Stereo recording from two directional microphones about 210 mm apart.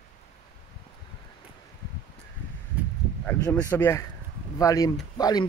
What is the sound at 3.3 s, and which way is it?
Speech, 10° left (ahead or behind).